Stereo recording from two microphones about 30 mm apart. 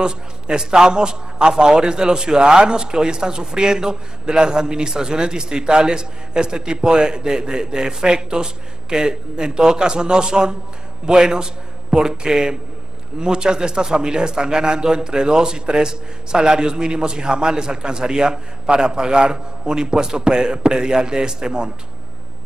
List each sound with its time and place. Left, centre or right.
0.0 s a man's voice: right